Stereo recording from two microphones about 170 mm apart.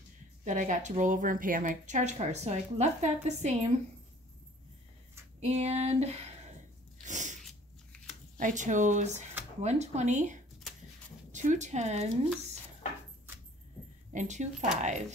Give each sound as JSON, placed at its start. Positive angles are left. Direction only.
{"t": 0.4, "sound": "a woman's voice", "side_deg": -45}
{"t": 5.4, "sound": "a sound", "side_deg": -40}
{"t": 7.1, "sound": "sneeze", "side_deg": -45}
{"t": 8.4, "sound": "a woman's voice", "side_deg": -45}
{"t": 14.1, "sound": "a woman's voice", "side_deg": -45}